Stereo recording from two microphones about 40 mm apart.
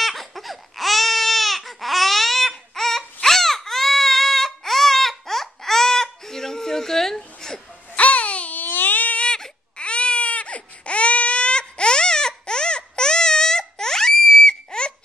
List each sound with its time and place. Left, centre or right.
0.0 s baby cry: centre
7.9 s baby cry: left
8.5 s baby cry: left
9.8 s baby cry: left